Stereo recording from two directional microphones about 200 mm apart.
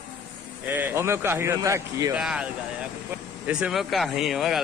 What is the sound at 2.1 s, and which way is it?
Speech, 5° right (ahead or behind).